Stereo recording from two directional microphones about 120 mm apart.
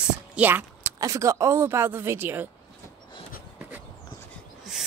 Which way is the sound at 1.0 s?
25° right (ahead or behind).